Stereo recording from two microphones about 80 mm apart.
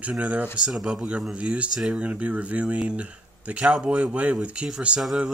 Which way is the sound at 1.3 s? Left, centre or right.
Centre.